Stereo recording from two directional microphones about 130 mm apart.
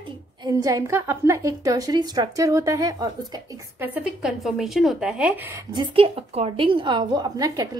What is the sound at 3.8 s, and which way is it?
Speech, 10° right (ahead or behind).